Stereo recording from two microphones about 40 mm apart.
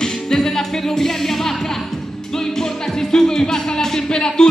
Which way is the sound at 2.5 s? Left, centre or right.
Centre.